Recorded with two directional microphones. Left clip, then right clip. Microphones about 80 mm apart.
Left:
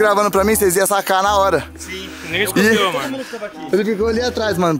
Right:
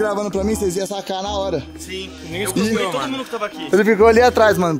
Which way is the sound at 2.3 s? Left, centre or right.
Left.